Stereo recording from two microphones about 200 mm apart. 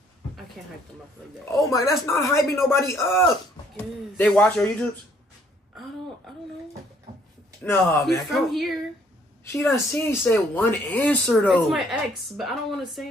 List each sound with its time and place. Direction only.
1.5 s a woman's voice: 15° left (ahead or behind)
7.6 s a woman's voice: 10° left (ahead or behind)
9.4 s a woman's voice: 15° left (ahead or behind)